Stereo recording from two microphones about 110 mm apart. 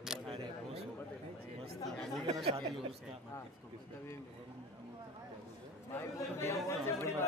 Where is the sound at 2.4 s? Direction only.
65° right (ahead or behind).